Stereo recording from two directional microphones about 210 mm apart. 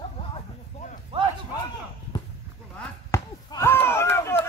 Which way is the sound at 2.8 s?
15° left (ahead or behind).